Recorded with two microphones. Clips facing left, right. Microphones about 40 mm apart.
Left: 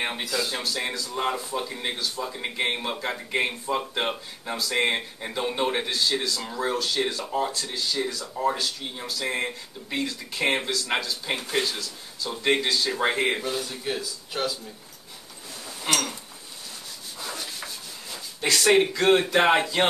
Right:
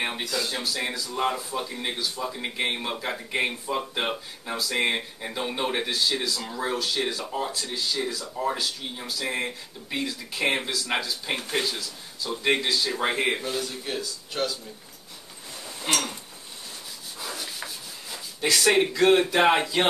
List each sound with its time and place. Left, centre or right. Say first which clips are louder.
0.0 s speech: left 1 dB; centre
15.9 s speech: left 1 dB; centre
17.2 s rub: even; centre
18.4 s speech: left 1 dB; centre